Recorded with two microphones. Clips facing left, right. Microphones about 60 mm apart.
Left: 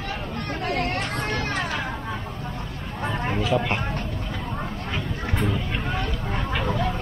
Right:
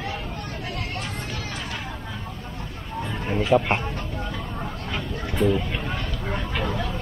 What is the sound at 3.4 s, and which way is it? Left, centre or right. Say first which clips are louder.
Speech: right 5 dB; centre.